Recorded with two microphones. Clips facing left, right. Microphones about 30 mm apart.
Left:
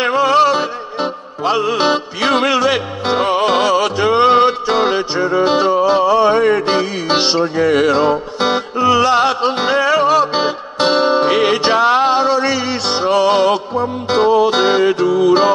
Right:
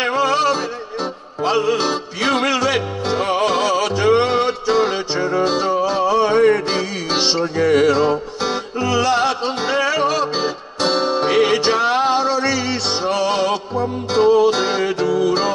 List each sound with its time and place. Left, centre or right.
0.0 s music: centre
5.4 s music: left
5.7 s a sound: centre
6.6 s music: left
7.9 s music: left
9.9 s music: centre
10.3 s music: left
11.1 s music: centre